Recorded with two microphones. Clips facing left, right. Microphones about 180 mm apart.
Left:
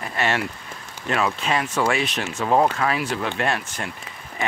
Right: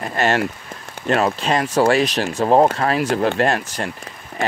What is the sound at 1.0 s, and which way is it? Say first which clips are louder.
Speech: right 5 dB; 40° right (ahead or behind).